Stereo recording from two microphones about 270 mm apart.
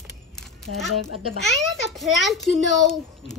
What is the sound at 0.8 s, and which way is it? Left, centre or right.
Speech, left.